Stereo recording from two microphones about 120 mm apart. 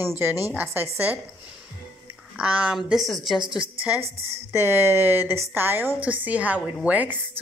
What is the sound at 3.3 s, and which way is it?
Speech, 45° right (ahead or behind).